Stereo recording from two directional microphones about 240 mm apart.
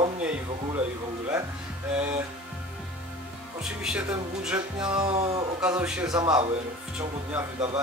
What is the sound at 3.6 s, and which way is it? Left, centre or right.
Speech, centre.